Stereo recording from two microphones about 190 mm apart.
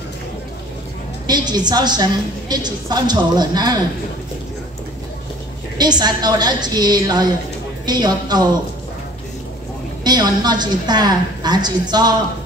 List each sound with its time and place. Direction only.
1.2 s a woman's voice: 20° right (ahead or behind)
5.8 s a woman's voice: 20° right (ahead or behind)
10.0 s a woman's voice: 20° right (ahead or behind)